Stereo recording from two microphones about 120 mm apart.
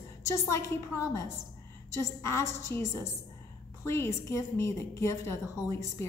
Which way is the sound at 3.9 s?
25° left (ahead or behind).